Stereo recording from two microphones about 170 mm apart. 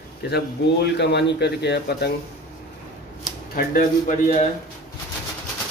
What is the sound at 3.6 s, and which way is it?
Speech, 55° left (ahead or behind).